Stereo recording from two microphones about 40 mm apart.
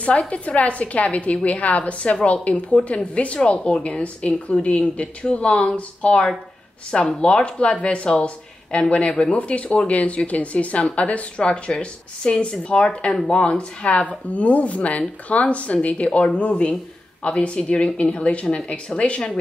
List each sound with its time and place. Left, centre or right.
0.3 s a woman's voice: left